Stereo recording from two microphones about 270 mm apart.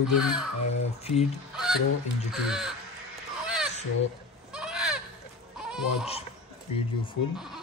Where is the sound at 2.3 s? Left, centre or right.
Centre.